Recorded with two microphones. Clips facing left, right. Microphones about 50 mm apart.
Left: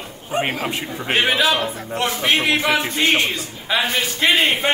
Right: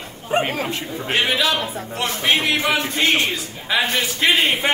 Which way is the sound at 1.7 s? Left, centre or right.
Centre.